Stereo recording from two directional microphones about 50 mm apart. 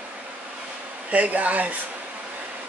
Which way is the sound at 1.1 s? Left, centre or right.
Right.